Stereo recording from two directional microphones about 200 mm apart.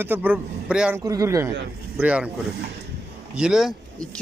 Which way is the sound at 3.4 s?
Centre (ahead or behind).